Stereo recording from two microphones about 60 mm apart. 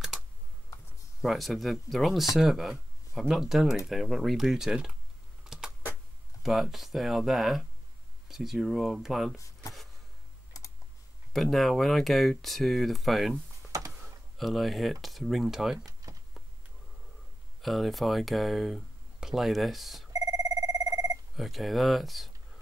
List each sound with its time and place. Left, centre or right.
1.2 s speech: centre
5.4 s computer keyboard: centre
6.4 s speech: centre
9.4 s a sound: left
11.5 s speech: centre
13.7 s a sound: right
14.0 s speech: centre
17.6 s speech: centre
20.1 s telephone bell ringing: right
21.4 s speech: centre